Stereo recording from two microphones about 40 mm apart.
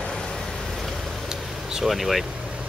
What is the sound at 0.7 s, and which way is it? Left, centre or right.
Vehicle, centre.